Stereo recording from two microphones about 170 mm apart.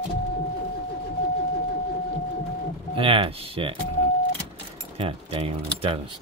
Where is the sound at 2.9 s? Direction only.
30° right (ahead or behind).